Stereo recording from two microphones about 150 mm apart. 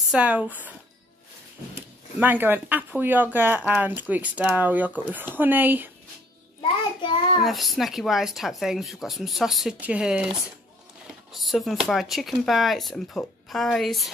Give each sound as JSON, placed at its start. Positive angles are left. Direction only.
{"t": 0.1, "sound": "speech", "side_deg": -10}
{"t": 2.1, "sound": "speech", "side_deg": -10}
{"t": 6.6, "sound": "child singing", "side_deg": 35}
{"t": 7.4, "sound": "speech", "side_deg": 0}